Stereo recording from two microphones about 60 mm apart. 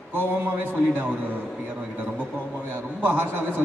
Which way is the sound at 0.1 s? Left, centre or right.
Right.